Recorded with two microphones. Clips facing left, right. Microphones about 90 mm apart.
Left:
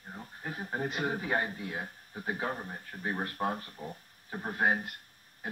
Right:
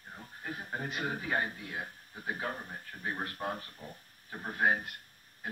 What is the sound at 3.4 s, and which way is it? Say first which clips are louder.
Speech: left 4 dB; 25° left (ahead or behind).